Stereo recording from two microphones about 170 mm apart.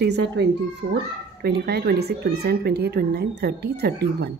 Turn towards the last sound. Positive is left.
turn(degrees=-75)  # may be behind; listen again after turning